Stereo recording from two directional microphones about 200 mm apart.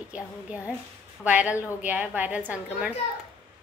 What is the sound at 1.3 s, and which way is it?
A woman's voice, 10° right (ahead or behind).